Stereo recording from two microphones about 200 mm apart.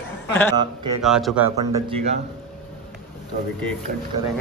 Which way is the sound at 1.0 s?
5° right (ahead or behind).